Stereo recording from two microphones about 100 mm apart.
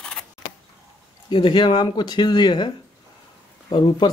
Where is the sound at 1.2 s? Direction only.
55° left (ahead or behind).